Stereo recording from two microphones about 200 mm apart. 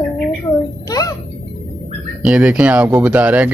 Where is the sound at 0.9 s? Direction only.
15° left (ahead or behind).